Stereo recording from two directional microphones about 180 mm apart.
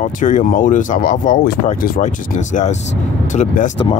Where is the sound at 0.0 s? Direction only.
45° left (ahead or behind).